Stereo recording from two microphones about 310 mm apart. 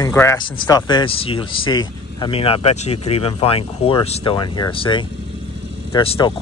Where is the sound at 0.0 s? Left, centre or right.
Centre.